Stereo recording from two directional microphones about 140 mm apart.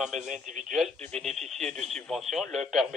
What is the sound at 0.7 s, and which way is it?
Speech, centre (ahead or behind).